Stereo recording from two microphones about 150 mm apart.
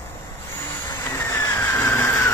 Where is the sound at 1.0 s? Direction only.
15° left (ahead or behind).